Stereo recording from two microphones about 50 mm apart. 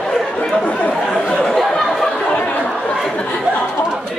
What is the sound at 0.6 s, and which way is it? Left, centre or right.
Chatter, left.